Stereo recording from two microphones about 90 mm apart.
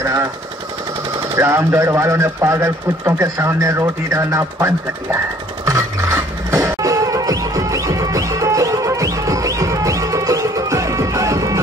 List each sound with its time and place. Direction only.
0.0 s speech: 35° right (ahead or behind)
1.3 s speech: 30° right (ahead or behind)
5.7 s music: 35° right (ahead or behind)